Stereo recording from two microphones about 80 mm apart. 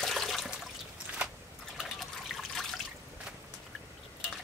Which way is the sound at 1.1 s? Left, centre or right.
Right.